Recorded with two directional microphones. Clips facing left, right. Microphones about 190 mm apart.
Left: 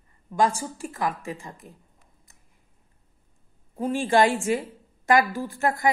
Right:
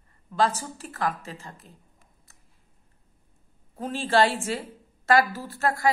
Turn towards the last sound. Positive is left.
turn(degrees=20)  # may be behind; listen again after turning